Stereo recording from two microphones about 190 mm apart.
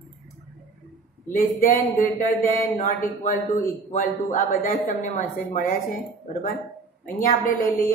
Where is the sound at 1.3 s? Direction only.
45° left (ahead or behind).